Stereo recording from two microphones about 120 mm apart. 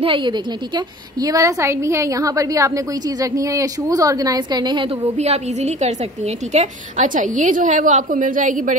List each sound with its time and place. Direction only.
0.0 s a woman's voice: 45° right (ahead or behind)
5.1 s a woman's voice: 65° right (ahead or behind); by 8.7 s 90° right